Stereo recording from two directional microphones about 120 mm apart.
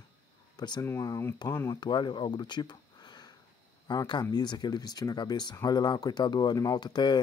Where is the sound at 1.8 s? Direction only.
40° left (ahead or behind).